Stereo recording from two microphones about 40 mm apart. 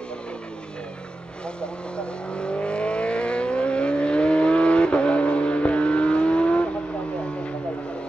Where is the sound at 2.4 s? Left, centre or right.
Left.